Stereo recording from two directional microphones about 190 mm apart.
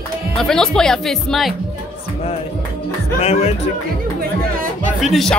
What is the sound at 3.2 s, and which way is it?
Music, 35° left (ahead or behind).